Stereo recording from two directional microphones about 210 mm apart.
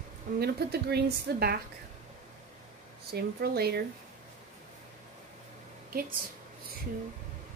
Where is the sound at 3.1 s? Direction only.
50° right (ahead or behind).